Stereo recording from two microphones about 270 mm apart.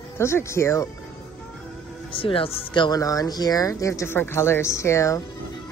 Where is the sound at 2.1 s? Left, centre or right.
Centre.